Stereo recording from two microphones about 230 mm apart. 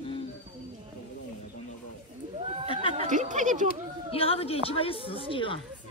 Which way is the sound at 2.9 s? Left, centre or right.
Right.